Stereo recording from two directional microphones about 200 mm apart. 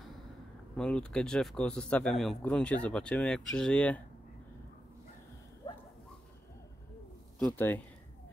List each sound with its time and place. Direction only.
0.7 s a man's voice: 5° left (ahead or behind)
7.5 s speech: 10° left (ahead or behind)